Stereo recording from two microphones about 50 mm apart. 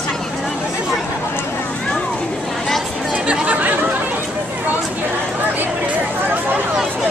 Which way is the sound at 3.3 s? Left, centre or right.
Right.